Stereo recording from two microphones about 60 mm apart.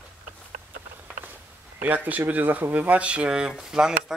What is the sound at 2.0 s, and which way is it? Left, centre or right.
Speech, right.